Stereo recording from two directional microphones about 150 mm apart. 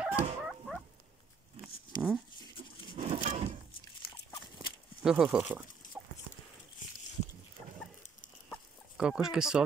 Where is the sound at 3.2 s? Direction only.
40° right (ahead or behind).